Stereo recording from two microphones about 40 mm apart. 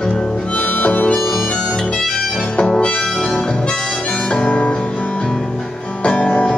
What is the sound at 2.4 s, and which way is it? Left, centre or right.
Harmonica, left.